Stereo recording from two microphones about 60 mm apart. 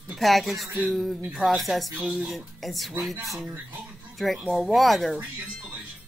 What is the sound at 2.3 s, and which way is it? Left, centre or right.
Speech, centre.